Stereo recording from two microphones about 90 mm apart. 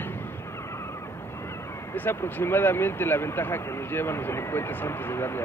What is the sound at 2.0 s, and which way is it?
Speech, 20° left (ahead or behind).